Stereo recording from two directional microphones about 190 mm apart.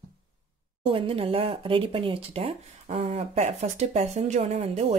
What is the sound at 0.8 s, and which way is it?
Speech, 30° right (ahead or behind).